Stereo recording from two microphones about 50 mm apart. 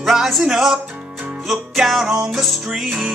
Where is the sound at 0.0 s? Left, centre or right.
Centre.